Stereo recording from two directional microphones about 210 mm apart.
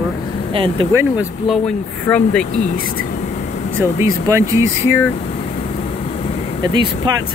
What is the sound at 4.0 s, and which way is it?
Speech, 15° right (ahead or behind).